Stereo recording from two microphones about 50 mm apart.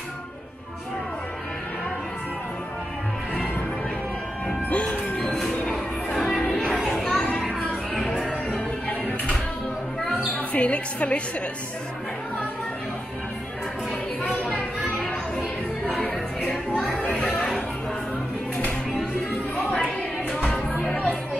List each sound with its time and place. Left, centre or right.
4.6 s music: left
5.1 s music: centre
6.9 s music: centre
7.6 s music: left
10.5 s a woman's voice: left
16.9 s chatter: left
17.3 s music: centre